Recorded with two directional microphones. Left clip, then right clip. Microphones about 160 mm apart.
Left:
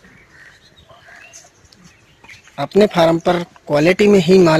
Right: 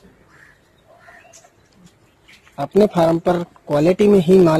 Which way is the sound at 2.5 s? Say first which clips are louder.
Left 2 dB; centre (ahead or behind).